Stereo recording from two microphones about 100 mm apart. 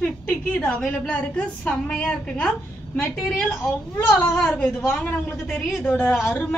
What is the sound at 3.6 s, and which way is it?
Speech, 25° left (ahead or behind).